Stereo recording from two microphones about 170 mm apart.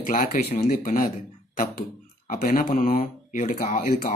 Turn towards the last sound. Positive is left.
turn(degrees=60)  # may be behind; listen again after turning